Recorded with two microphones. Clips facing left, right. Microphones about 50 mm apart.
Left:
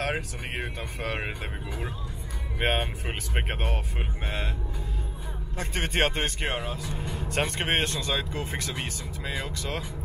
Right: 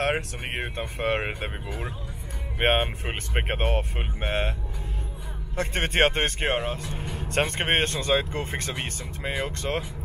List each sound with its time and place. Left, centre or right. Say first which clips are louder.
0.0 s speech: right 4 dB; right
2.6 s speech: right 4 dB; right
3.1 s speech: right 3 dB; right
3.5 s speech: right 6 dB; right
5.6 s speech: right 4 dB; right